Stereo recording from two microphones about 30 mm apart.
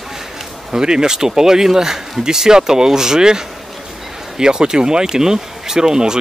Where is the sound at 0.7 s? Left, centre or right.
Right.